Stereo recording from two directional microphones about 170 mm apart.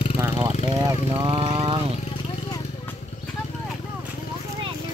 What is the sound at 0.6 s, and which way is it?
Speech, 25° right (ahead or behind).